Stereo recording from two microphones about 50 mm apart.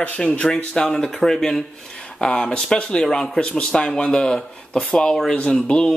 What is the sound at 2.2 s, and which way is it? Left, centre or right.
Speech, centre.